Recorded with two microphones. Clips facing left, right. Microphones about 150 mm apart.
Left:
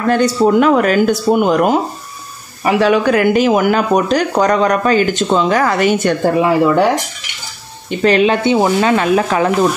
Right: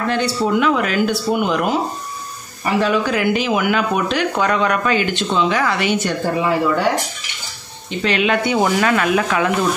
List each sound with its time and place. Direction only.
0.0 s speech: 45° left (ahead or behind)
2.6 s speech: 80° left
3.1 s speech: 50° left (ahead or behind)
8.0 s speech: 40° left (ahead or behind)
8.5 s speech: 20° left (ahead or behind)